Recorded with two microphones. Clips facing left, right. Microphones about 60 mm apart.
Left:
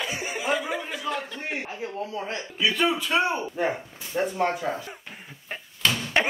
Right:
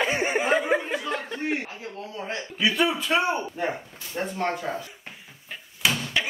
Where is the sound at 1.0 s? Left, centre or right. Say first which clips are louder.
Even; right.